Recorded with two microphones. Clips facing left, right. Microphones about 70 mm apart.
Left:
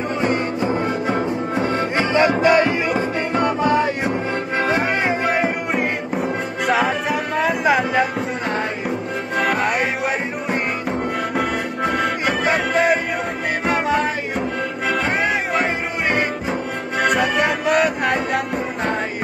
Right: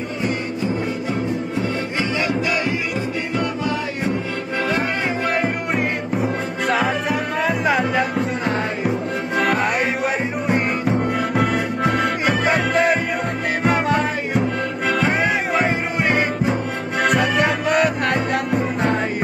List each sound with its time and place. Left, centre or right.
2.0 s music: left
4.7 s music: centre